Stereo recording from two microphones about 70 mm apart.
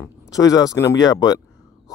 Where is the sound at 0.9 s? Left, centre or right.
Left.